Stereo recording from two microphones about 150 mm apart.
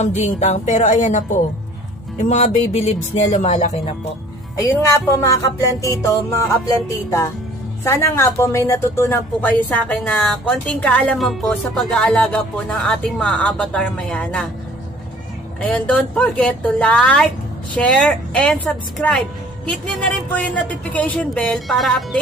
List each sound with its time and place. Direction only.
0.0 s speech: 50° left (ahead or behind)
5.6 s music: 20° left (ahead or behind)
7.8 s a woman's voice: 15° left (ahead or behind)
15.7 s a woman's voice: 5° left (ahead or behind)